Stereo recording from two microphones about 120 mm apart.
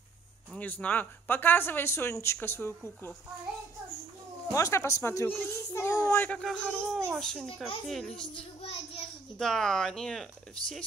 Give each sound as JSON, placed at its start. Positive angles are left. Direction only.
{"t": 0.6, "sound": "a child's voice", "side_deg": 10}
{"t": 4.5, "sound": "a child's voice", "side_deg": 25}
{"t": 6.2, "sound": "speech", "side_deg": 5}
{"t": 9.4, "sound": "speech", "side_deg": 5}